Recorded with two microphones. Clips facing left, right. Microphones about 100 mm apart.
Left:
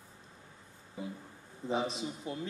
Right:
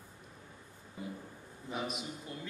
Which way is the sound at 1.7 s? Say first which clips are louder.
Left 5 dB; 30° left (ahead or behind).